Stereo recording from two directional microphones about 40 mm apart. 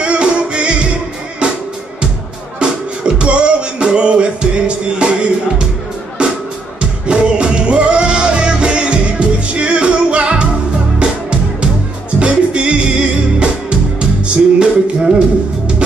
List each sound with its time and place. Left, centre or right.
0.0 s music: right
2.6 s music: right
14.2 s music: right